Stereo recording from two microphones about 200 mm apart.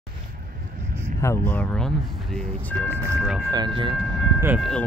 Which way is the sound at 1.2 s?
10° left (ahead or behind).